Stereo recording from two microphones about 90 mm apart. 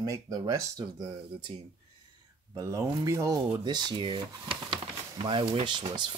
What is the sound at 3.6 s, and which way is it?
Speech, 55° right (ahead or behind).